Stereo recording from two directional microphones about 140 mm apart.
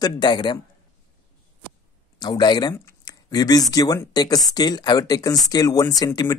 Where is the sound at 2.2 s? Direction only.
30° left (ahead or behind).